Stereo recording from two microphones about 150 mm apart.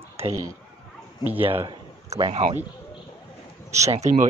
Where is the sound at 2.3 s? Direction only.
50° right (ahead or behind).